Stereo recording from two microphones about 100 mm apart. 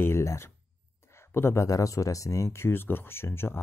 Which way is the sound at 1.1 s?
25° left (ahead or behind).